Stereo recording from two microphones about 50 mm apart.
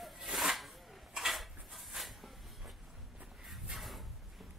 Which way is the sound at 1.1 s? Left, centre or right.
Centre.